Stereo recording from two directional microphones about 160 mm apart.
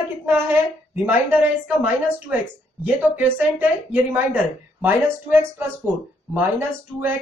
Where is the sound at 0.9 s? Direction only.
10° right (ahead or behind).